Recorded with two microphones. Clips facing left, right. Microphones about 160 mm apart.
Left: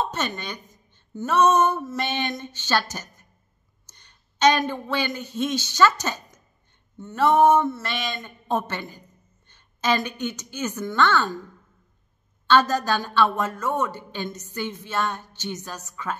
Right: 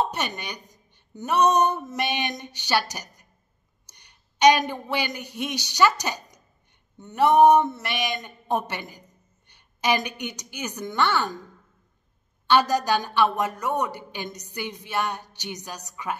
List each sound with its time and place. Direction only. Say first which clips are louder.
0.0 s a woman's voice: even; 15° right (ahead or behind)
12.4 s a woman's voice: left 1 dB; 15° right (ahead or behind)